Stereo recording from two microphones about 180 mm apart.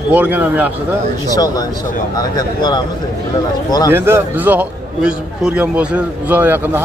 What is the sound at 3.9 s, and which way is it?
A man's voice, 10° right (ahead or behind).